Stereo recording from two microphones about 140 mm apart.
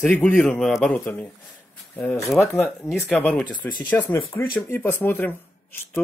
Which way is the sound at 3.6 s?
30° left (ahead or behind).